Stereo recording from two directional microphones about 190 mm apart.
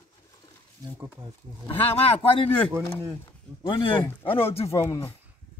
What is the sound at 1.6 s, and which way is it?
Speech, 30° left (ahead or behind).